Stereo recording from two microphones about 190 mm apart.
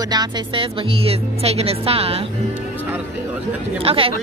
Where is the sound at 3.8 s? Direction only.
30° right (ahead or behind).